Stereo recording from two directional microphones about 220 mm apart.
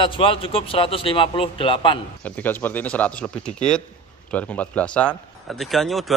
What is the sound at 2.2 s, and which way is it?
A man's voice, 10° left (ahead or behind).